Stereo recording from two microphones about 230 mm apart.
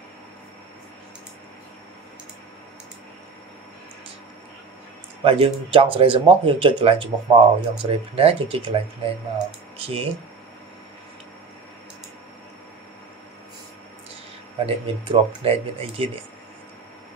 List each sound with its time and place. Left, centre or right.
5.2 s speech: right
14.7 s speech: right